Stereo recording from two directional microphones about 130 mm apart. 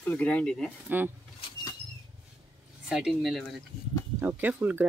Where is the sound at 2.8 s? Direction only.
5° right (ahead or behind).